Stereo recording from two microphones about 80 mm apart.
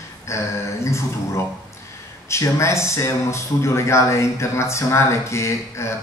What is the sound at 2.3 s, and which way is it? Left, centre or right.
Speech, left.